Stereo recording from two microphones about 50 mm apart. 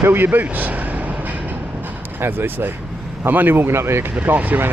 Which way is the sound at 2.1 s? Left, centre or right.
Right.